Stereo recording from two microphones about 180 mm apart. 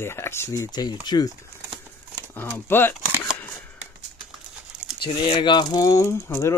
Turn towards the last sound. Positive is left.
turn(degrees=15)  # may be behind; listen again after turning